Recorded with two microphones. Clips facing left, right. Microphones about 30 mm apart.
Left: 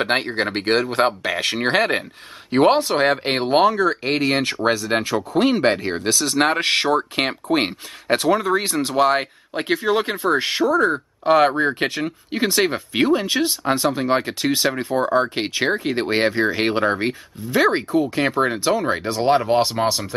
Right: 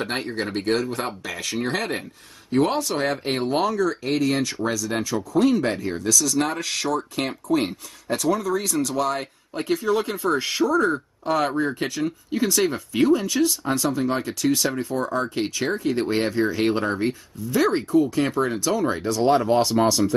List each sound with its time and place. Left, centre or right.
0.0 s speech: left